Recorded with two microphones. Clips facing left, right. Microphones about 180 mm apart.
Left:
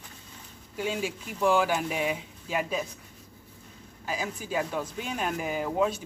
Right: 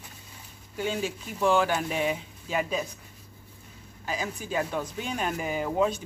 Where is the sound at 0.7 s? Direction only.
5° left (ahead or behind).